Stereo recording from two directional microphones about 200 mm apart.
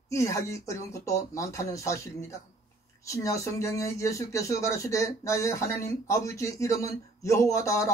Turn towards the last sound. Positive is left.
turn(degrees=15)  # may be behind; listen again after turning